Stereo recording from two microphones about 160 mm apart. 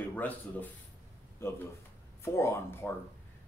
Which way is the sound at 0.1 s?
10° left (ahead or behind).